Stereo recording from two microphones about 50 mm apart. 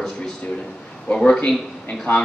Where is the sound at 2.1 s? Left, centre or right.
Left.